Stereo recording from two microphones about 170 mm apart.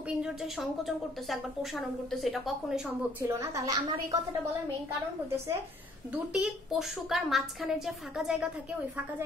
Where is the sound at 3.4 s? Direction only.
20° right (ahead or behind).